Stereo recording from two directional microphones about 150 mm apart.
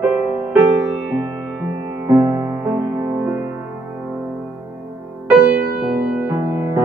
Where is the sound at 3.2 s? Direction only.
15° right (ahead or behind).